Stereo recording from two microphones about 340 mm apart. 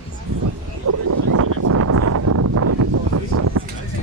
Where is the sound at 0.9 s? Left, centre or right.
Right.